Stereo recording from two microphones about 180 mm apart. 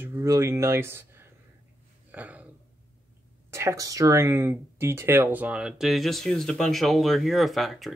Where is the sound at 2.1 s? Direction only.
10° right (ahead or behind).